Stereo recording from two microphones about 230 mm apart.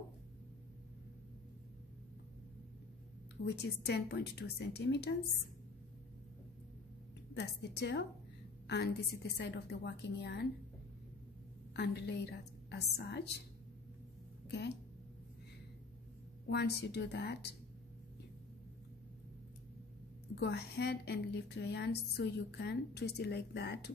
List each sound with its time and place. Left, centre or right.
3.4 s a woman's voice: left
7.3 s a woman's voice: left
11.7 s a woman's voice: left
16.4 s a woman's voice: left
20.3 s a woman's voice: left